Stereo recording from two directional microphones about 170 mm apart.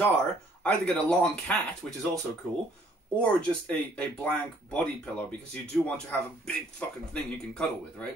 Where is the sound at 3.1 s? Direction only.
5° left (ahead or behind).